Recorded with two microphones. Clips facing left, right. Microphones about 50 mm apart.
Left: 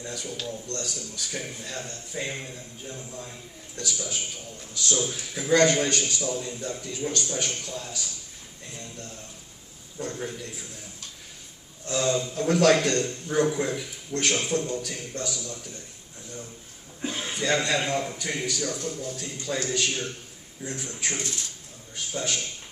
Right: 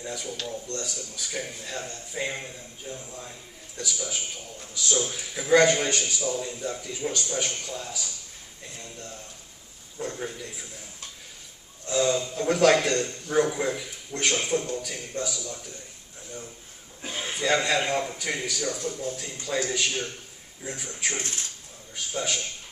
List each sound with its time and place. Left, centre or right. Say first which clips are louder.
0.0 s a man's voice: even; centre
9.9 s a man's voice: even; centre
11.8 s a man's voice: right 1 dB; centre
17.0 s a man's voice: even; centre